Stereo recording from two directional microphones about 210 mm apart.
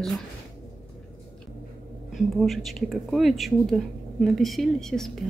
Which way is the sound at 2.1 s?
Centre (ahead or behind).